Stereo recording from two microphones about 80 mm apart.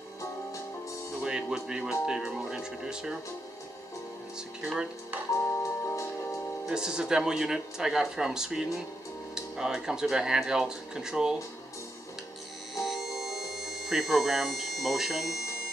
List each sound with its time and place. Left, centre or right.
1.2 s speech: centre
4.6 s speech: centre
5.4 s music: left
6.6 s speech: centre
12.8 s music: centre